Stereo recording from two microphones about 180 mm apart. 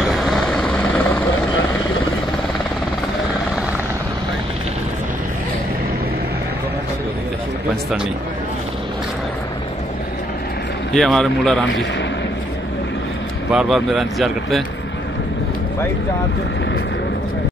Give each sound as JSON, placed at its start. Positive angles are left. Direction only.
{"t": 0.1, "sound": "vehicle", "side_deg": 0}
{"t": 10.9, "sound": "speech", "side_deg": 5}
{"t": 13.5, "sound": "speech", "side_deg": 0}